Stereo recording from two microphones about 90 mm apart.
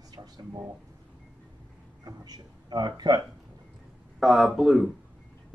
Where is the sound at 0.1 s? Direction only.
45° right (ahead or behind).